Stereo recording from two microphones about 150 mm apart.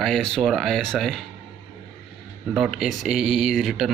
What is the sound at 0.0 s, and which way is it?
A man's voice, 5° left (ahead or behind).